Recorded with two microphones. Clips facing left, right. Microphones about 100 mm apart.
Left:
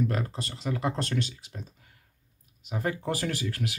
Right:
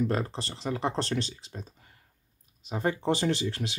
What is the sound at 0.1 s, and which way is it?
Speech, 30° right (ahead or behind).